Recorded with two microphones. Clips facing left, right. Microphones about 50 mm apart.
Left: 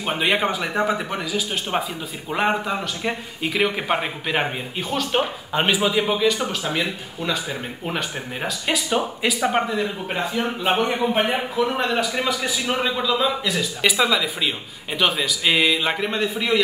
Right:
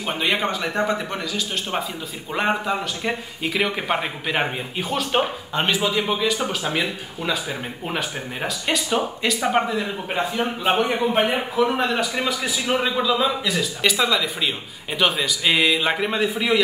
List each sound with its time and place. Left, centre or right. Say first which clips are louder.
0.0 s speech: left 2 dB; centre
5.5 s speech: left 4 dB; centre